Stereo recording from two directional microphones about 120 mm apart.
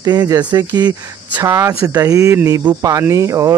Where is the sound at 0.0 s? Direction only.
35° right (ahead or behind).